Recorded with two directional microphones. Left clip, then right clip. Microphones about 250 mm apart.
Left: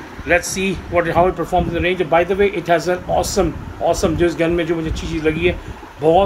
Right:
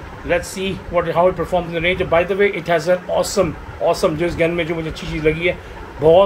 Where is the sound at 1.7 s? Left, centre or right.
Centre.